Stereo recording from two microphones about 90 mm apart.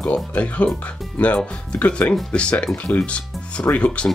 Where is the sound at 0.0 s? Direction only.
15° left (ahead or behind).